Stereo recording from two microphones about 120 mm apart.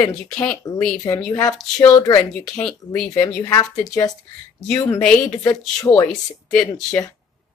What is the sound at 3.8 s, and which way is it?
Speech, 30° left (ahead or behind).